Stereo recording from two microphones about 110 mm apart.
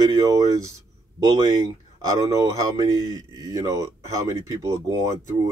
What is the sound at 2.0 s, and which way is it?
Speech, 30° right (ahead or behind).